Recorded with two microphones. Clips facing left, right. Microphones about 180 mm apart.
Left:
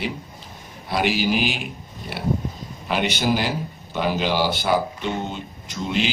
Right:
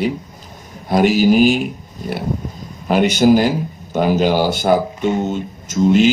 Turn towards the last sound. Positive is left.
turn(degrees=-45)  # may be behind; listen again after turning